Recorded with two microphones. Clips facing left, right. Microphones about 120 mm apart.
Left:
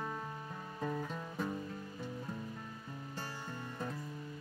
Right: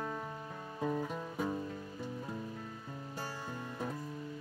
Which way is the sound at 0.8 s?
15° right (ahead or behind).